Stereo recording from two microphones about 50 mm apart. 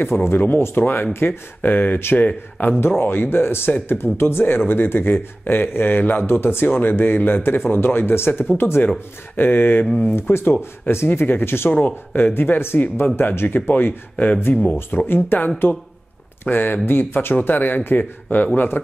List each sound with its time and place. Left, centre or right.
0.0 s speech: left
3.0 s speech: left
11.2 s speech: left
11.7 s speech: left
12.4 s speech: left
14.1 s speech: left